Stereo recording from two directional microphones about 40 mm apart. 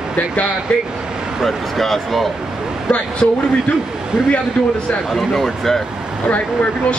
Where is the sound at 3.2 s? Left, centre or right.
Left.